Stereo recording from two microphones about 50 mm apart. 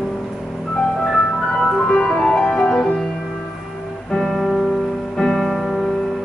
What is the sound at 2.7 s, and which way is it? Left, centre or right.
Music, centre.